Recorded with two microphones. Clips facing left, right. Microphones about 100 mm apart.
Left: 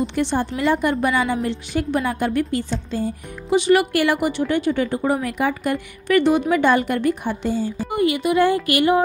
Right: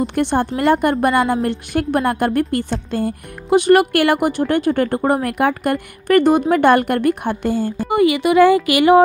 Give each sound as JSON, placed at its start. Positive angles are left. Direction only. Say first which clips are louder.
{"t": 0.0, "sound": "a woman's voice", "louder": "right 3 dB", "side_deg": -55}
{"t": 7.9, "sound": "speech", "louder": "right 5 dB", "side_deg": -90}